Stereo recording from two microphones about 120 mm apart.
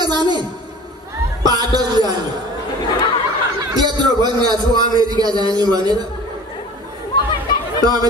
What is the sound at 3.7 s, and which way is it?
A man's voice, 35° right (ahead or behind).